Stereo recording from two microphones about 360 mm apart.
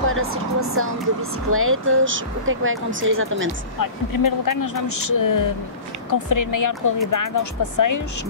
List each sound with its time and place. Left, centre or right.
0.1 s speech: right
3.8 s speech: left